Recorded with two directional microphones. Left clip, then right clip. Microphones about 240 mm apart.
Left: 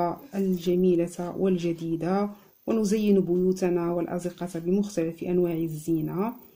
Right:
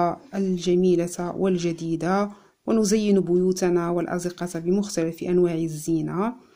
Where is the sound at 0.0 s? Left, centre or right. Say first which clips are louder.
Right 4 dB; right.